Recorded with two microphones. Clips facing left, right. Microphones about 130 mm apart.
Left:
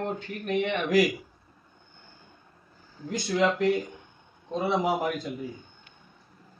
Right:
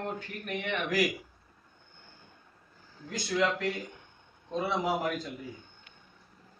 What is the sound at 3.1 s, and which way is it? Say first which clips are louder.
A man's voice: left 4 dB; 20° left (ahead or behind).